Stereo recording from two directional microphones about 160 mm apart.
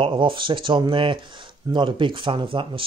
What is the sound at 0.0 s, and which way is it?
Speech, 30° right (ahead or behind).